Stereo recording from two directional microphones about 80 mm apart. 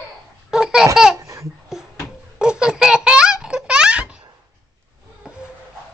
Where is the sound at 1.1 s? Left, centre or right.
Right.